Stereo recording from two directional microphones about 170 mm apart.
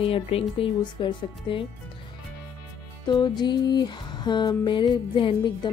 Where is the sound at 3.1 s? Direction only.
25° left (ahead or behind).